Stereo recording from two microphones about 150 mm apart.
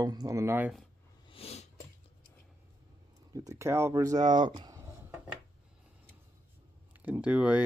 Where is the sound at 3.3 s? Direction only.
25° right (ahead or behind).